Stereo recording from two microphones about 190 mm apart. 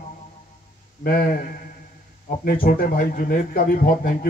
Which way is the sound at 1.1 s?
50° left (ahead or behind).